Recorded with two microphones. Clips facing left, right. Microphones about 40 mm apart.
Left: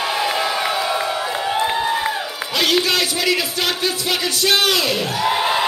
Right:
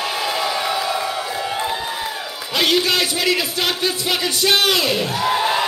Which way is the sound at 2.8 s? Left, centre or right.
Centre.